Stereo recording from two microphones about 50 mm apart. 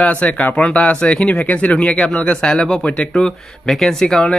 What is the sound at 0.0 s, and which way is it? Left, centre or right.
Speech, left.